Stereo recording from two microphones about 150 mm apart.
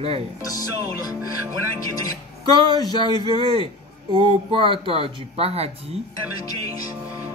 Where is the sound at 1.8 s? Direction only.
25° left (ahead or behind).